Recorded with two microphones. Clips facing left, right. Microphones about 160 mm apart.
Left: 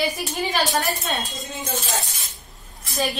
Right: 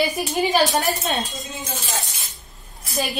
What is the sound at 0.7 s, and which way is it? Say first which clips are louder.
Speech: right 2 dB; 20° right (ahead or behind).